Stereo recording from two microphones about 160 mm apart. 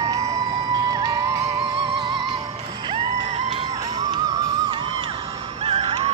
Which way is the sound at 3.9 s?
25° right (ahead or behind).